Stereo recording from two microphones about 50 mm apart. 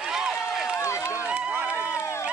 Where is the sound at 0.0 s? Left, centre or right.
Centre.